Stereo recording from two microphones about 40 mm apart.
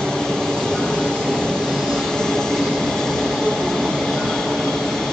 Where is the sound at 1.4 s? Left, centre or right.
Centre.